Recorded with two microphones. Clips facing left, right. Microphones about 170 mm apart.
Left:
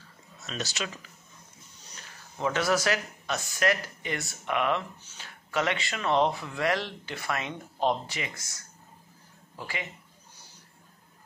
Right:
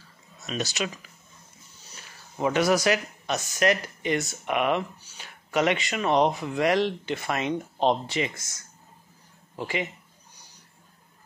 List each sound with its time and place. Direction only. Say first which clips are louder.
0.5 s speech: right 5 dB; 15° right (ahead or behind)
2.3 s speech: right 4 dB; 15° right (ahead or behind)
9.6 s speech: right 7 dB; 20° right (ahead or behind)